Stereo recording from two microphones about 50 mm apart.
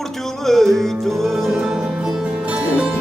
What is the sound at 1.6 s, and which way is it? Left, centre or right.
Music, centre.